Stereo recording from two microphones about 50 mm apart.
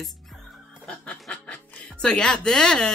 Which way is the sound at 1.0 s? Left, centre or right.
Left.